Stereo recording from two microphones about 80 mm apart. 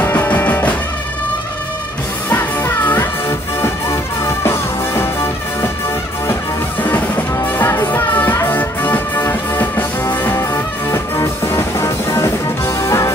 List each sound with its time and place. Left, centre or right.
0.0 s music: left
2.2 s music: left
7.5 s music: left